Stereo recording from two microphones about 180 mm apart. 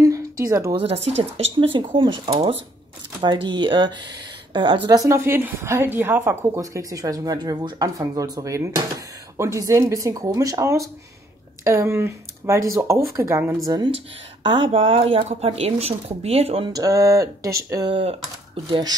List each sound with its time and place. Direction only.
0.0 s a sound: 20° right (ahead or behind)
0.7 s a woman's voice: 35° right (ahead or behind); by 13.6 s 15° right (ahead or behind)
13.7 s speech: 25° right (ahead or behind)
16.7 s a woman's voice: 20° right (ahead or behind)